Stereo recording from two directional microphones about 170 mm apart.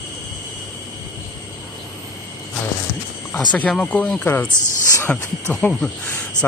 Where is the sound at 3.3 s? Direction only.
5° left (ahead or behind).